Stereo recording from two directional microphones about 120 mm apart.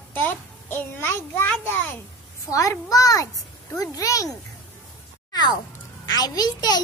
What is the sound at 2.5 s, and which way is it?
A child's voice, 30° left (ahead or behind).